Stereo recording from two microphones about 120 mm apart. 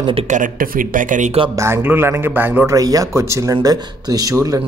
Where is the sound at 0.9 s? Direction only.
90° right.